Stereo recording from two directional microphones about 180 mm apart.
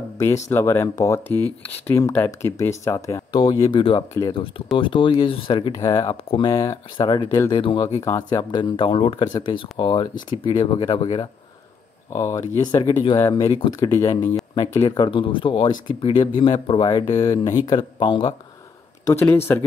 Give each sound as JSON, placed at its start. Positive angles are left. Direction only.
{"t": 0.5, "sound": "speech", "side_deg": 15}
{"t": 12.1, "sound": "speech", "side_deg": 15}
{"t": 12.8, "sound": "speech", "side_deg": 30}
{"t": 19.0, "sound": "speech", "side_deg": 15}